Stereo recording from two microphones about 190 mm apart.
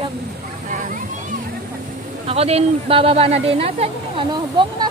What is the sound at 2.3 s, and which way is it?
Speech, 30° right (ahead or behind).